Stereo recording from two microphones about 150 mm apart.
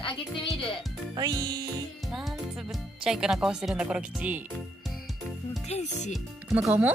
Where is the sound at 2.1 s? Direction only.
Centre (ahead or behind).